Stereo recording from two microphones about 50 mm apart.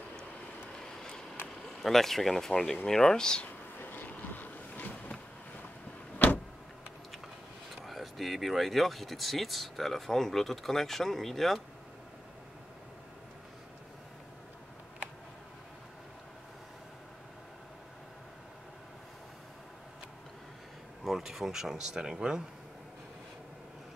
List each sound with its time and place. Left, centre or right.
1.8 s speech: centre
3.8 s vehicle: left
6.1 s vehicle: left
7.8 s speech: centre
21.0 s speech: centre